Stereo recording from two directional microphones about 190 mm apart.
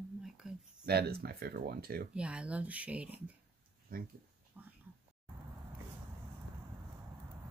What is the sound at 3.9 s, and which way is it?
Speech, 50° right (ahead or behind).